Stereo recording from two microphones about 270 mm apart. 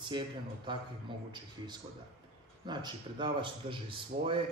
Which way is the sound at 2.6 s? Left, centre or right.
Centre.